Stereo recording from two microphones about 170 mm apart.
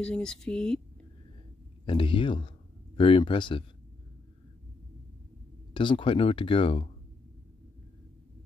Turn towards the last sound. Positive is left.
turn(degrees=30)  # may be behind; listen again after turning